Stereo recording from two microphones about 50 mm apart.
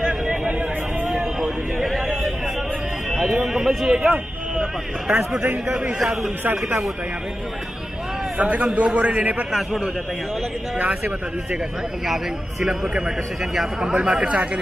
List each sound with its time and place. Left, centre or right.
0.0 s a sound: right
3.1 s a sound: centre
3.5 s a man's voice: centre
5.9 s a man's voice: centre
8.4 s a man's voice: right
12.1 s a man's voice: centre
14.2 s a man's voice: right